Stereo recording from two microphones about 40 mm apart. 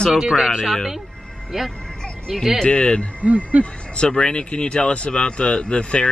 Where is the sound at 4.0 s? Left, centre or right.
Left.